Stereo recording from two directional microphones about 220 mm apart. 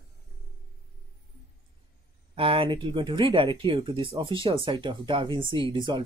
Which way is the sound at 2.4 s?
25° right (ahead or behind).